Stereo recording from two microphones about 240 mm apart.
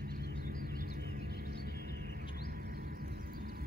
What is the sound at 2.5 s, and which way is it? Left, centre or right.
Vehicle, right.